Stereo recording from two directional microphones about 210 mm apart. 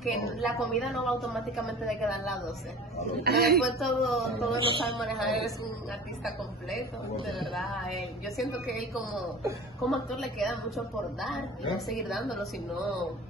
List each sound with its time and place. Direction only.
0.0 s a woman's voice: centre (ahead or behind)
3.3 s speech: 50° right (ahead or behind)
3.6 s a woman's voice: centre (ahead or behind)
4.6 s speech: 25° right (ahead or behind)
5.0 s a woman's voice: centre (ahead or behind)
7.5 s a woman's voice: centre (ahead or behind)
11.9 s a woman's voice: centre (ahead or behind)